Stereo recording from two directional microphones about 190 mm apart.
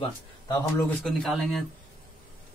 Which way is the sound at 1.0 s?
Centre (ahead or behind).